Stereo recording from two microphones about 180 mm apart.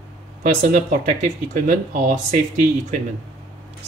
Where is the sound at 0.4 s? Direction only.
40° right (ahead or behind).